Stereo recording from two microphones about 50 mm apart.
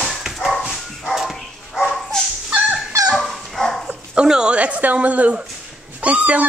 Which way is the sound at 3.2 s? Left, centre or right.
Centre.